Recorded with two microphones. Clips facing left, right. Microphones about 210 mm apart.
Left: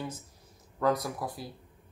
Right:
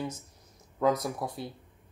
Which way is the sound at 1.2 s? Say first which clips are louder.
Right 1 dB; 25° right (ahead or behind).